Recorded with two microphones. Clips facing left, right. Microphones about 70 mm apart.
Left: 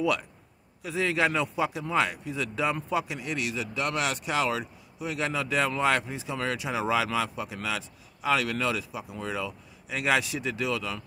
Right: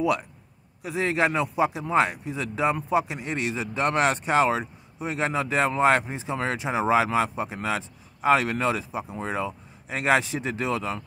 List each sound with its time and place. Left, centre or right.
0.0 s speech: right